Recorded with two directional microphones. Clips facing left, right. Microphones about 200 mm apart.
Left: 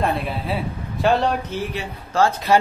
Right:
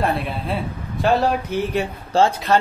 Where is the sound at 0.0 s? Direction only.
Centre (ahead or behind).